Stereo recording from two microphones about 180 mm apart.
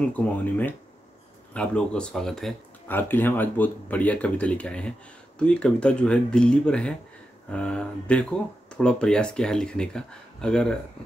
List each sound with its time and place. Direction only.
0.1 s speech: 10° left (ahead or behind)